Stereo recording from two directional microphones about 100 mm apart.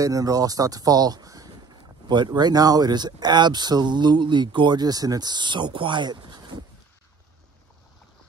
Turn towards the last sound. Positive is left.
turn(degrees=-45)  # may be behind; listen again after turning